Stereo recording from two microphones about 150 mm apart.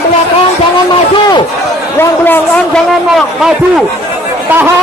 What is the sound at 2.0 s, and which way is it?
A man's voice, 15° left (ahead or behind).